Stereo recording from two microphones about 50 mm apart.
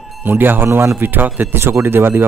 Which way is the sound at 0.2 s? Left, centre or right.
Right.